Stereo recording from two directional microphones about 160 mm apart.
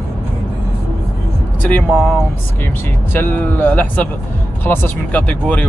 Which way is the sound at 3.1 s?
10° left (ahead or behind).